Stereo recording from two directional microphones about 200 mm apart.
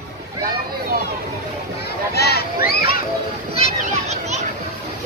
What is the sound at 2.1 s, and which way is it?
Speech, 50° left (ahead or behind).